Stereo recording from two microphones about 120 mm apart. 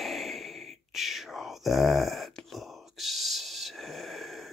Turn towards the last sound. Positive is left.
turn(degrees=0)  # may be behind; listen again after turning